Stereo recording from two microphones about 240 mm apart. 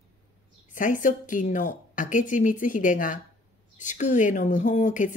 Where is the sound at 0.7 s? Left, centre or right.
Left.